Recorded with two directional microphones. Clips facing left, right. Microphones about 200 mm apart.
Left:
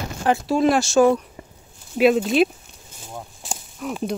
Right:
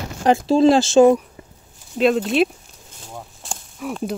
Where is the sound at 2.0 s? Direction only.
5° left (ahead or behind).